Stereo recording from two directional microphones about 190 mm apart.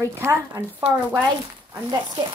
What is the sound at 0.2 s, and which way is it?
Speech, 15° right (ahead or behind).